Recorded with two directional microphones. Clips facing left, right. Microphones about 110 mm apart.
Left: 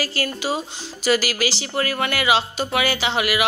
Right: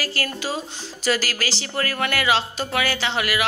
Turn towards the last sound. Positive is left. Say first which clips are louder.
# left 2 dB
turn(degrees=10)  # may be behind; listen again after turning